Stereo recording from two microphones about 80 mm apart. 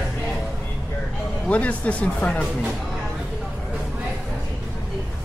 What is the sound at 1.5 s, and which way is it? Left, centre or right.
Speech, centre.